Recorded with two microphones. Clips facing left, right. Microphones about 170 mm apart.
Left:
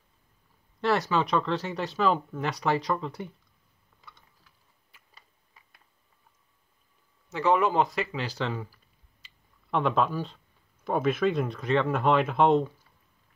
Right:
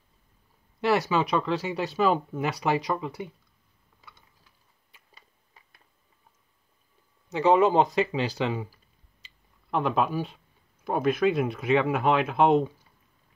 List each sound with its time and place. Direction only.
0.7 s speech: 5° right (ahead or behind)
7.2 s speech: 20° right (ahead or behind)
9.7 s speech: 5° right (ahead or behind)